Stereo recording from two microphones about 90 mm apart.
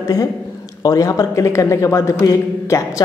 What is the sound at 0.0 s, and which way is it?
A woman's voice, 40° left (ahead or behind).